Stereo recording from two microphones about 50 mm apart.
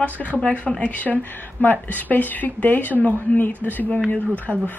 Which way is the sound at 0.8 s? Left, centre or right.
Left.